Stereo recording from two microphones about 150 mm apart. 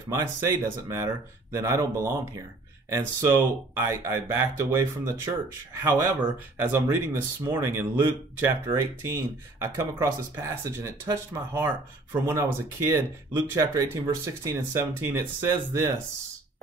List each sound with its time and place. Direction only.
0.1 s speech: 20° right (ahead or behind)